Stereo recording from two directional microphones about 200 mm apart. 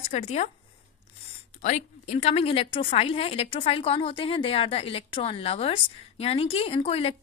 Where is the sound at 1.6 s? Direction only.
35° left (ahead or behind).